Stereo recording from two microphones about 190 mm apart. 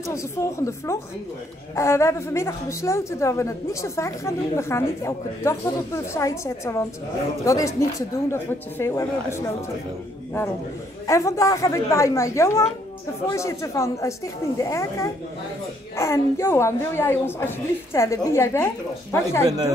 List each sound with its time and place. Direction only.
0.1 s a woman's voice: 15° left (ahead or behind)
11.1 s a woman's voice: 15° left (ahead or behind)